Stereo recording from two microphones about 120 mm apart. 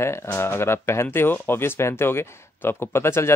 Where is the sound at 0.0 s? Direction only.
20° left (ahead or behind).